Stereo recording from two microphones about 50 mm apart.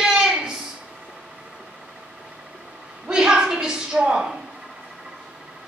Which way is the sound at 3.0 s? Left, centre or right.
Centre.